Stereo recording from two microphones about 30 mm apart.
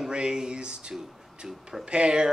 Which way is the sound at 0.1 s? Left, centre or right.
Right.